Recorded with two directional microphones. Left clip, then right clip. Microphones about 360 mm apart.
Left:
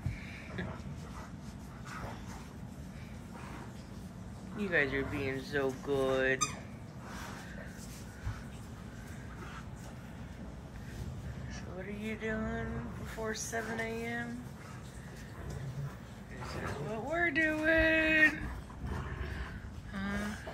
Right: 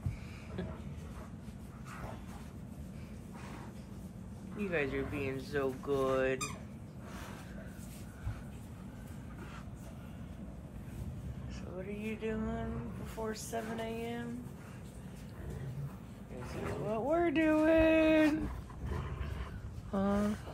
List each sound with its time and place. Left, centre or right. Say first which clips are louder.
4.6 s speech: left 4 dB; centre
11.8 s a sound: even; centre
13.1 s speech: left 2 dB; centre
16.6 s speech: right 5 dB; centre
20.0 s speech: right 5 dB; centre